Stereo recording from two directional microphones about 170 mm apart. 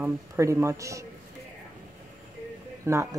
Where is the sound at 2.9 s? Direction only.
15° right (ahead or behind).